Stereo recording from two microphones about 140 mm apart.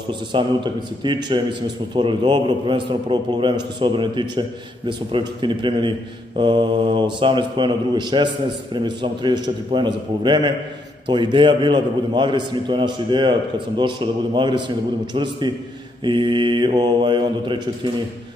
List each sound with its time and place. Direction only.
0.3 s a man's voice: 35° right (ahead or behind)